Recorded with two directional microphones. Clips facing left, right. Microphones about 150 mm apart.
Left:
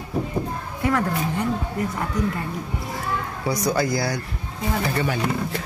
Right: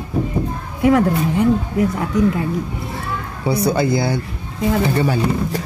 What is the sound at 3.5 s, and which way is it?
Speech, 30° right (ahead or behind).